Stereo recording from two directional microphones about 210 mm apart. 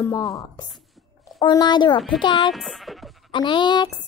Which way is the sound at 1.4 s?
20° left (ahead or behind).